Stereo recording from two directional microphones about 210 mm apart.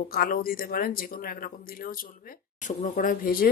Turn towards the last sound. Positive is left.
turn(degrees=45)  # may be behind; listen again after turning